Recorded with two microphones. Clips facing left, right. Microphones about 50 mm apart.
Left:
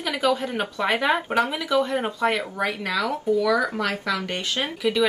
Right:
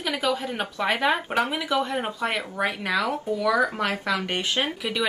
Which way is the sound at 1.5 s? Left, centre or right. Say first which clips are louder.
Left 2 dB; centre.